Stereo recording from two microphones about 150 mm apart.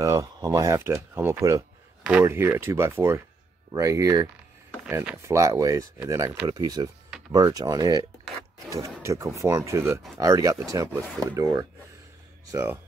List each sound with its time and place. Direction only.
0.0 s speech: 20° right (ahead or behind)